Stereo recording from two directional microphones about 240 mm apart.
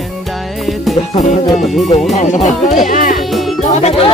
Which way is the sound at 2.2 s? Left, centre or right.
Left.